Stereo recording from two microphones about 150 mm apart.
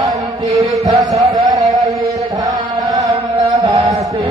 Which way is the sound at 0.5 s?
25° right (ahead or behind).